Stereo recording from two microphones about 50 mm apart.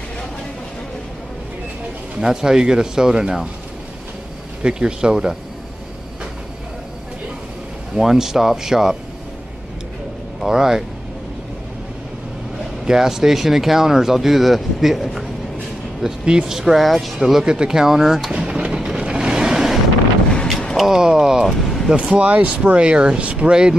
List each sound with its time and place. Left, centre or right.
2.1 s speech: centre
4.6 s speech: centre
7.9 s speech: centre
10.4 s speech: centre
12.8 s speech: centre
16.0 s speech: centre
20.4 s a sound: centre
20.8 s speech: centre
21.5 s vehicle: centre
21.9 s speech: right